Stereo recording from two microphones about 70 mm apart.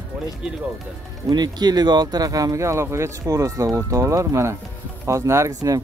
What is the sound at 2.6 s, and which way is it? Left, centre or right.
Speech, right.